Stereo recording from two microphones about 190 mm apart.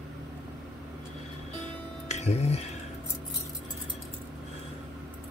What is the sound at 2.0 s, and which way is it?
Music, 35° left (ahead or behind).